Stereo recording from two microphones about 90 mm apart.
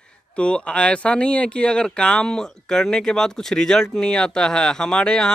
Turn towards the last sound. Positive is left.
turn(degrees=10)  # may be behind; listen again after turning